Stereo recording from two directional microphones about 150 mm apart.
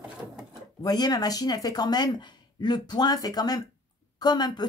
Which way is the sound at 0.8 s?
25° left (ahead or behind).